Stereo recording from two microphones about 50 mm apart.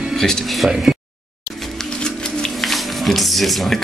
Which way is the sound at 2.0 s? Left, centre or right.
Centre.